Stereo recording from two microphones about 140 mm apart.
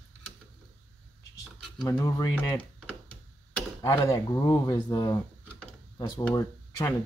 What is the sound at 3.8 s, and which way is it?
Speech, 25° left (ahead or behind).